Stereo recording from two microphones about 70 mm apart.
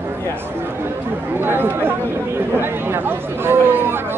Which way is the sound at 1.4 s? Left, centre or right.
Right.